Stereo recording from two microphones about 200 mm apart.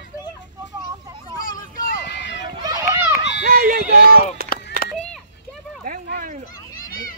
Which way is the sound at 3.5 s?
50° right (ahead or behind).